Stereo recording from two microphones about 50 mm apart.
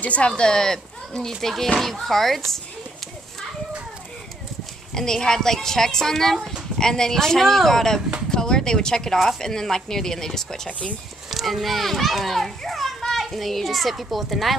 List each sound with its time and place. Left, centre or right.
0.0 s speech: left
0.4 s a woman's voice: centre
4.9 s a woman's voice: centre
11.2 s a child's voice: centre